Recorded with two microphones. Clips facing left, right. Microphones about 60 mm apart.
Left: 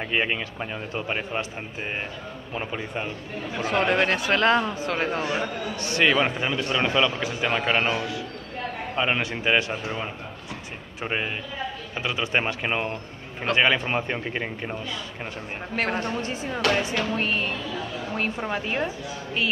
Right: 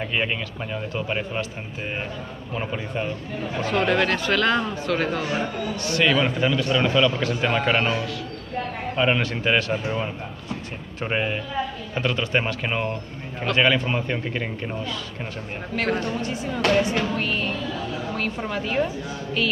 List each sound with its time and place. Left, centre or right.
0.0 s a man's voice: centre
7.8 s a man's voice: centre
11.1 s a man's voice: centre
11.9 s a man's voice: centre; by 14.1 s left
14.1 s a man's voice: centre
15.7 s a man's voice: left